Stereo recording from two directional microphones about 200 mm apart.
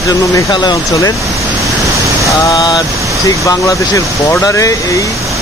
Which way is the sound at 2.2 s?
15° left (ahead or behind).